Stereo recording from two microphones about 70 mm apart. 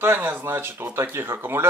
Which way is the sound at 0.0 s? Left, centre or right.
Right.